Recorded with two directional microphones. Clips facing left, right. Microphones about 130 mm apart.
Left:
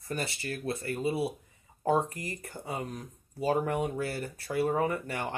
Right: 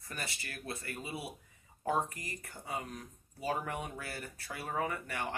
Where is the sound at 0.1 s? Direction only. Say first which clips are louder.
Left 9 dB; 30° left (ahead or behind).